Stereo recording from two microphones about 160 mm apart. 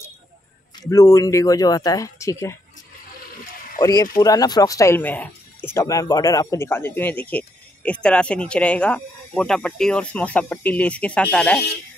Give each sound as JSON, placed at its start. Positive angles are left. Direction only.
{"t": 0.7, "sound": "speech", "side_deg": 20}
{"t": 3.8, "sound": "speech", "side_deg": 20}